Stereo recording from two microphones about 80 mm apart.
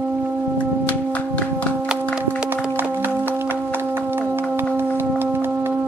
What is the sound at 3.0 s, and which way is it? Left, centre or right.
Music, right.